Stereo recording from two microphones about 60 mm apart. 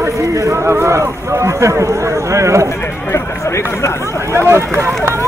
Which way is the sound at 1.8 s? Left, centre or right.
Right.